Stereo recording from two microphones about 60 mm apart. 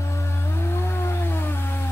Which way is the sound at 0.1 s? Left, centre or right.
Left.